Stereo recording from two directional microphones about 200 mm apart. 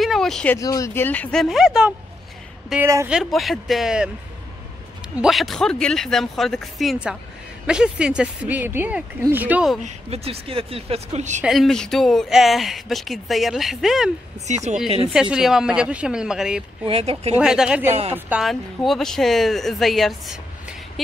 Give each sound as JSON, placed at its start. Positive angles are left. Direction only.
{"t": 0.0, "sound": "speech", "side_deg": 0}
{"t": 0.6, "sound": "speech", "side_deg": 15}
{"t": 3.1, "sound": "speech", "side_deg": 0}
{"t": 5.1, "sound": "speech", "side_deg": 0}
{"t": 9.8, "sound": "speech", "side_deg": -30}
{"t": 11.4, "sound": "speech", "side_deg": 0}
{"t": 14.5, "sound": "speech", "side_deg": -35}
{"t": 15.1, "sound": "speech", "side_deg": -5}
{"t": 16.8, "sound": "speech", "side_deg": -30}
{"t": 17.4, "sound": "speech", "side_deg": -5}